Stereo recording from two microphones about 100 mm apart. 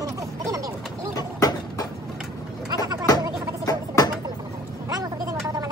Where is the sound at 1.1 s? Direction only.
40° left (ahead or behind).